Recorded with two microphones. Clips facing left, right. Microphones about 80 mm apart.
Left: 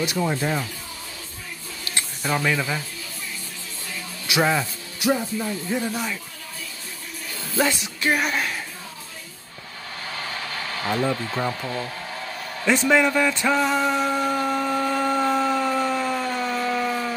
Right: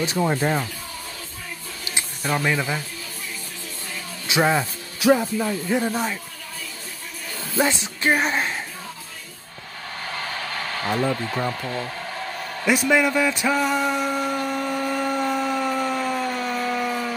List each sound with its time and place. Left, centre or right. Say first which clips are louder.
0.2 s speech: right 4 dB; right
2.2 s a man's voice: even; centre
4.4 s speech: right 1 dB; right
5.1 s speech: right 5 dB; right
5.8 s speech: right 3 dB; right
7.5 s speech: right 1 dB; right
11.1 s speech: even; centre
12.6 s a man's voice: even; centre
13.3 s a sound: even; centre